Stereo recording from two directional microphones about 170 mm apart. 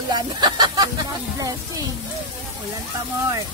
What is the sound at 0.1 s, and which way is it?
Speech, 25° right (ahead or behind).